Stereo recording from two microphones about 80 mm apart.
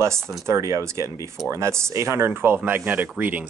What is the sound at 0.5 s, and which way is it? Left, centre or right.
Speech, right.